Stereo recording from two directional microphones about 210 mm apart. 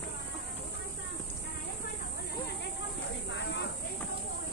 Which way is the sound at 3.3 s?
60° left (ahead or behind).